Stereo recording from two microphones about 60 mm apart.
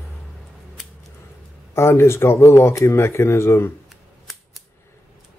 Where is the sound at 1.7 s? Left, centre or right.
Left.